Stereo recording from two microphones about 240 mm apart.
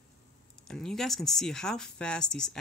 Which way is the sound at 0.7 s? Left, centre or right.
Centre.